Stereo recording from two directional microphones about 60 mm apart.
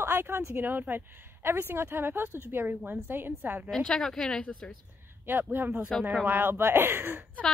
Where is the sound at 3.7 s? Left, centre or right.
Centre.